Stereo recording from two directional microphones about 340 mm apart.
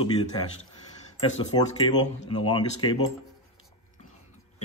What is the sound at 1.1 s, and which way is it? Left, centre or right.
Speech, centre.